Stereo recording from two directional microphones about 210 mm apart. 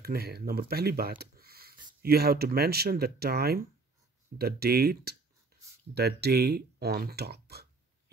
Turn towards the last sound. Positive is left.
turn(degrees=-50)  # may be behind; listen again after turning